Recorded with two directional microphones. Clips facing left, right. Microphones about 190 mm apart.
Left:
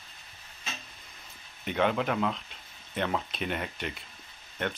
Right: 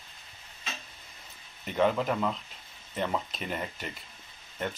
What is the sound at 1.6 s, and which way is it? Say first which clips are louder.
Speech: right 1 dB; centre (ahead or behind).